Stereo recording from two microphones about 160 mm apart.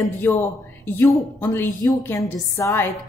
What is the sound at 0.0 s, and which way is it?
Speech, 15° left (ahead or behind).